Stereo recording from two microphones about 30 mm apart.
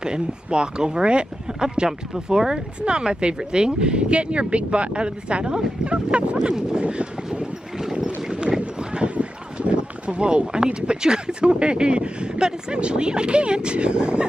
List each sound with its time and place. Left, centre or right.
0.0 s speech: right
1.5 s a sound: right
2.1 s speech: right
2.8 s speech: right
8.4 s clip-clop: right
9.1 s speech: right